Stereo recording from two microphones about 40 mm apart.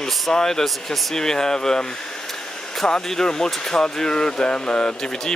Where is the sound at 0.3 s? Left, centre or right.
Centre.